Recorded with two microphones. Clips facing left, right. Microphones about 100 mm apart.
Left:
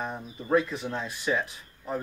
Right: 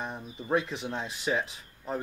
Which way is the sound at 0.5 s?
20° right (ahead or behind).